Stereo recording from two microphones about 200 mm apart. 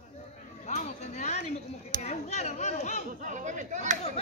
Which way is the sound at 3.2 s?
40° right (ahead or behind).